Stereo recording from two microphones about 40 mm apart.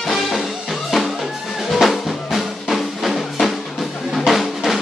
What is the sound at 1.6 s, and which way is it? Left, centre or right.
Drum, centre.